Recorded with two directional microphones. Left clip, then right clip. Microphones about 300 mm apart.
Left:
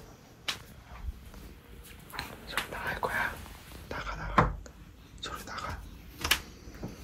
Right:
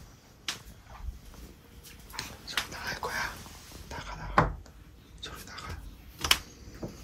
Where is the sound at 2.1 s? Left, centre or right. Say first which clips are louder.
Right 1 dB; centre.